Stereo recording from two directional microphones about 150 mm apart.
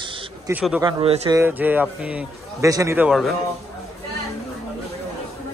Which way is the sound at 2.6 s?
20° right (ahead or behind).